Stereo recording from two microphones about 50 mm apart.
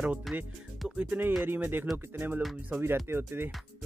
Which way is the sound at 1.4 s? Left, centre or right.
Right.